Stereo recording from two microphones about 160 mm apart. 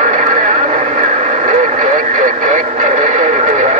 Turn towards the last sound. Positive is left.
turn(degrees=-45)  # may be behind; listen again after turning